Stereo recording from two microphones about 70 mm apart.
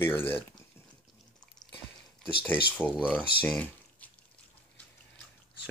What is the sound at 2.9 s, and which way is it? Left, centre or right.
Speech, centre.